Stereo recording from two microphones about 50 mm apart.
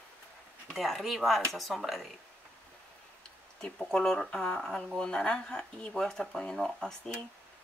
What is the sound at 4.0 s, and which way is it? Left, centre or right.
Speech, centre.